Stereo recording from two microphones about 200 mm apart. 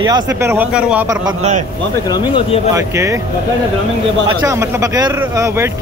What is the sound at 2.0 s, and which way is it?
Speech, 20° left (ahead or behind).